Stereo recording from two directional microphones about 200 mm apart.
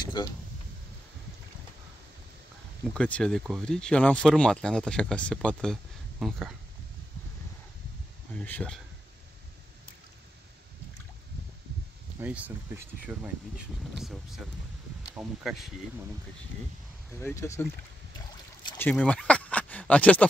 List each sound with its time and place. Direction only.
0.0 s vehicle: 20° left (ahead or behind)
2.9 s speech: 5° left (ahead or behind)
8.4 s speech: 5° left (ahead or behind)
12.2 s speech: 5° right (ahead or behind)
15.4 s speech: centre (ahead or behind)
17.2 s speech: 15° left (ahead or behind)
18.8 s speech: 5° left (ahead or behind)